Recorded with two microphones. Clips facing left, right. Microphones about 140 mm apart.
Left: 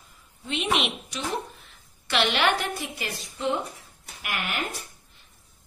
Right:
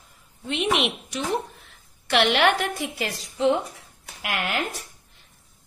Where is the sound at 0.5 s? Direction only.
60° right (ahead or behind).